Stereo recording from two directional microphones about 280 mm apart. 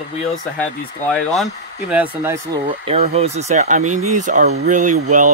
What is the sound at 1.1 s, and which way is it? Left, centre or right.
Speech, centre.